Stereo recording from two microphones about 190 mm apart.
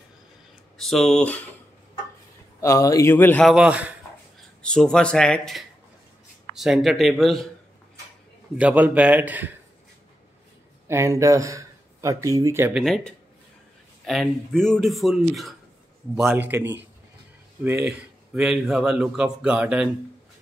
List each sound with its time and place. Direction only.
0.7 s speech: centre (ahead or behind)
2.6 s a man's voice: 15° left (ahead or behind); by 3.9 s 5° right (ahead or behind)
4.6 s speech: 5° left (ahead or behind)
8.5 s a man's voice: 10° right (ahead or behind)
10.9 s speech: 15° right (ahead or behind)
12.8 s speech: centre (ahead or behind)
16.3 s a man's voice: 10° right (ahead or behind)